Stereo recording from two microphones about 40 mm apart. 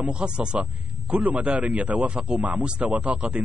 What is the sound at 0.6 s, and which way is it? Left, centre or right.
A man's voice, right.